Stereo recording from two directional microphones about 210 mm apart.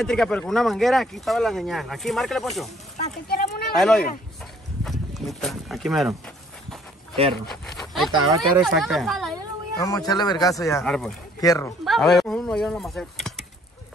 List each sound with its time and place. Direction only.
0.0 s speech: 5° left (ahead or behind)
3.3 s a sound: 45° left (ahead or behind)
3.7 s speech: centre (ahead or behind)
4.8 s a sound: centre (ahead or behind)
7.4 s speech: centre (ahead or behind)
9.8 s a man's voice: 20° left (ahead or behind)
10.8 s speech: centre (ahead or behind)
11.4 s a man's voice: 15° left (ahead or behind)
11.8 s speech: centre (ahead or behind)